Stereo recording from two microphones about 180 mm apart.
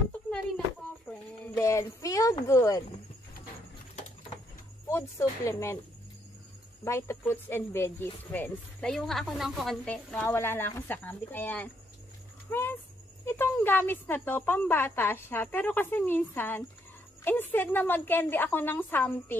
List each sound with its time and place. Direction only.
1.6 s speech: 15° left (ahead or behind)
4.8 s speech: 15° left (ahead or behind)
6.8 s speech: 15° left (ahead or behind)
12.4 s a sound: 10° left (ahead or behind)
13.2 s speech: 15° left (ahead or behind)